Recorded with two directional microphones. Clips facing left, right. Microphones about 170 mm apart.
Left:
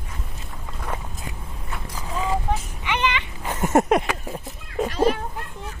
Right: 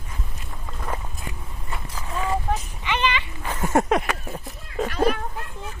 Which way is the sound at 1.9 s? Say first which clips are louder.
Left 1 dB; 15° left (ahead or behind).